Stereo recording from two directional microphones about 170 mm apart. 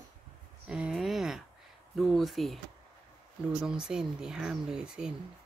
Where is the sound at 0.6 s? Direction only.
5° right (ahead or behind).